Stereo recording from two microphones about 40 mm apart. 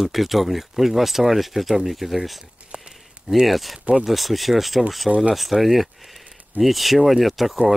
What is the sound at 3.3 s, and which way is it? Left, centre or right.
Speech, centre.